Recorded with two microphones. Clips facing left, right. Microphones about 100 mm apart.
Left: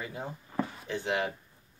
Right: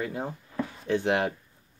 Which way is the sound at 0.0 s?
60° right (ahead or behind).